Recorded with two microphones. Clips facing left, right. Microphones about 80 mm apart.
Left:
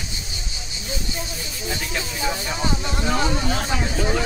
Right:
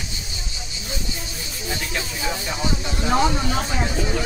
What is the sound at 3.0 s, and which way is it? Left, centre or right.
Speech, right.